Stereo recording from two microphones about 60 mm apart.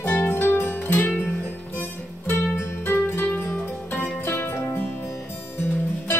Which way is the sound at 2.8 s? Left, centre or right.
Left.